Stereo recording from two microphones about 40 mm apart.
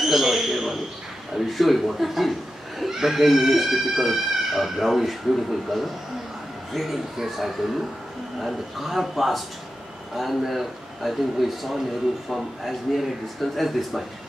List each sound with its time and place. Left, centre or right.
0.0 s a man's voice: centre